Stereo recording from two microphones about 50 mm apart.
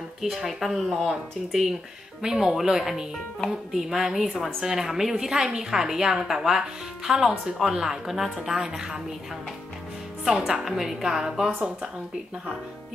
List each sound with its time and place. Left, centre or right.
0.2 s a woman's voice: centre
10.2 s a woman's voice: centre